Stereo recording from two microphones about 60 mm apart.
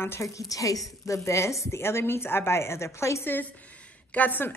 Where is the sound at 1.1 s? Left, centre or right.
Left.